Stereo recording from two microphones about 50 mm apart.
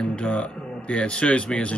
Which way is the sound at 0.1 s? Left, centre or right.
Left.